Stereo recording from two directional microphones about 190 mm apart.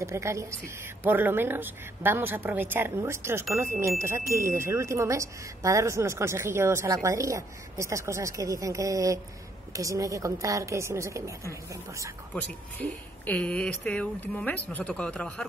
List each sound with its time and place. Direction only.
0.0 s speech: 15° right (ahead or behind)
12.4 s speech: 10° left (ahead or behind)